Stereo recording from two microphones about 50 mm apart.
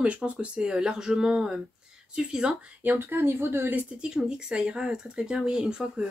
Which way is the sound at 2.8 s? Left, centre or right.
Right.